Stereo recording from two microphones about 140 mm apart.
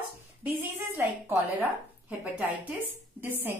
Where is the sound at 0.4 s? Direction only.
20° right (ahead or behind).